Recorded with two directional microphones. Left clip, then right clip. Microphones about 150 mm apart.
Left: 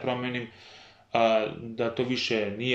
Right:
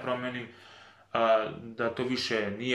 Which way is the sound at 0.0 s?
25° left (ahead or behind).